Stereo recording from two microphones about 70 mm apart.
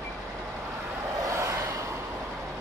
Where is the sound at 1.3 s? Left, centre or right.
Right.